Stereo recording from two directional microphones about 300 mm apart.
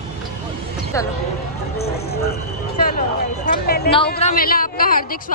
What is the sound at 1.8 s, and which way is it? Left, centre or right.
A woman's voice, left.